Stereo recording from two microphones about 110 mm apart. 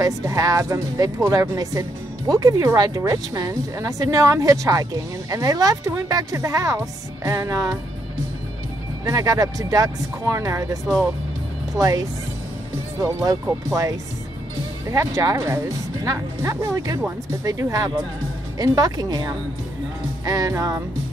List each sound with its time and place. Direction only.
0.0 s speech: 30° right (ahead or behind)
9.0 s speech: 35° right (ahead or behind)